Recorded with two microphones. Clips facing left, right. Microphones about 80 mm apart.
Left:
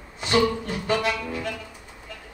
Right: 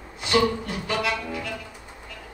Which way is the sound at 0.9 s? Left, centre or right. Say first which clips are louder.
Left 2 dB; left.